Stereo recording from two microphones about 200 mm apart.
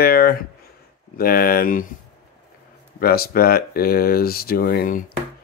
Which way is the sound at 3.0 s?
50° left (ahead or behind).